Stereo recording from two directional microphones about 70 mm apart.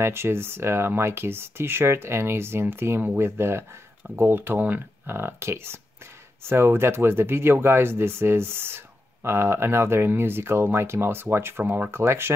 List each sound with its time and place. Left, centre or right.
0.0 s speech: right